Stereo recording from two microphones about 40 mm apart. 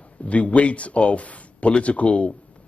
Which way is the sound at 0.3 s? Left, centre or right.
Left.